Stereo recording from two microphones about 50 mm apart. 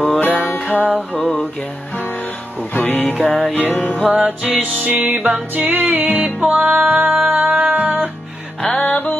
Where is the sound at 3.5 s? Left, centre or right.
Left.